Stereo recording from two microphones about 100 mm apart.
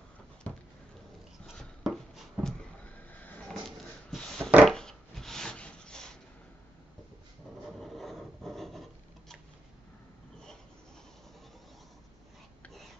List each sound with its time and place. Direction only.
0.5 s a sound: 15° left (ahead or behind)
1.6 s writing: centre (ahead or behind)
2.8 s neigh: 15° left (ahead or behind)
3.4 s a sound: 5° left (ahead or behind)
4.6 s wood: 5° left (ahead or behind)
7.6 s rub: centre (ahead or behind)